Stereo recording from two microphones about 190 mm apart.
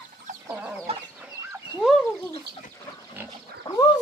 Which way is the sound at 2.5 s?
60° right (ahead or behind).